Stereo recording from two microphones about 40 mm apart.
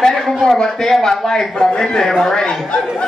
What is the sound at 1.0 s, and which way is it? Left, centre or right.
Speech, centre.